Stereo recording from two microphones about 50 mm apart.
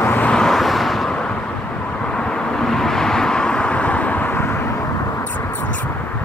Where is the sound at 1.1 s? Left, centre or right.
Centre.